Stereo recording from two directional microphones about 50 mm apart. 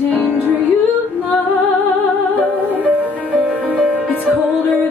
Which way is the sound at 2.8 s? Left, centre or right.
Right.